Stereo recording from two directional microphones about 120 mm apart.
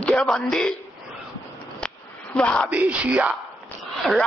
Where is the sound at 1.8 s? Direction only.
10° left (ahead or behind).